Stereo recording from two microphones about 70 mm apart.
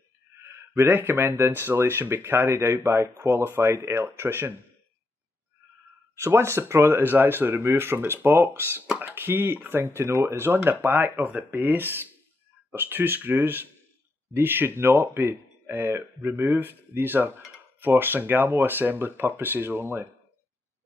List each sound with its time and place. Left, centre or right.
0.4 s speech: right
6.1 s speech: right